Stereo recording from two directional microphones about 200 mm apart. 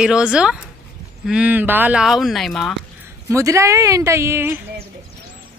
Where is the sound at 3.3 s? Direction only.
15° right (ahead or behind).